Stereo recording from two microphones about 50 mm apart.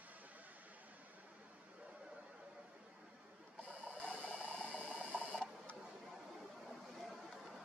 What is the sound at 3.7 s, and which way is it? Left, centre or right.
Ratchet, left.